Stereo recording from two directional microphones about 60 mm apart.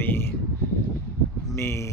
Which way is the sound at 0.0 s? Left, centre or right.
Left.